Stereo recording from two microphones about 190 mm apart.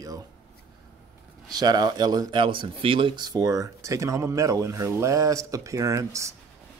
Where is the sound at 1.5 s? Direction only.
20° right (ahead or behind).